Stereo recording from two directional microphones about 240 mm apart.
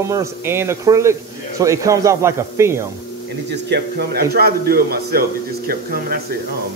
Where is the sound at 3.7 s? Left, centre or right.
Right.